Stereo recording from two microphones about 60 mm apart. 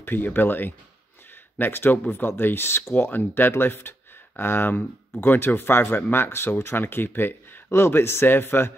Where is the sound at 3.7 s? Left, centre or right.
Left.